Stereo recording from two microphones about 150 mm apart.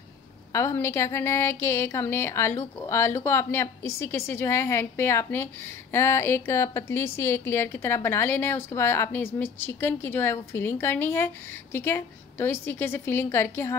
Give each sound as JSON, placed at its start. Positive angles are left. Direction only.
{"t": 0.5, "sound": "a woman's voice", "side_deg": 20}